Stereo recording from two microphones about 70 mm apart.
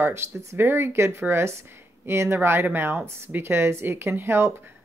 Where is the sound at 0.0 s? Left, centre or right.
Right.